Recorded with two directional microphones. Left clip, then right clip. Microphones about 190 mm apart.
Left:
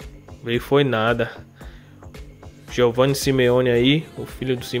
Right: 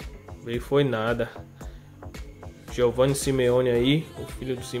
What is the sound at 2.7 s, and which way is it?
Speech, 30° left (ahead or behind).